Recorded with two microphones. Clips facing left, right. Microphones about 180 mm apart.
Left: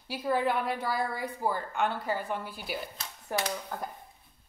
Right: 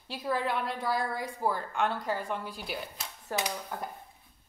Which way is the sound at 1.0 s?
65° left (ahead or behind).